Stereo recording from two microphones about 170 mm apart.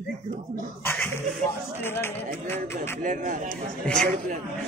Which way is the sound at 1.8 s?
15° left (ahead or behind).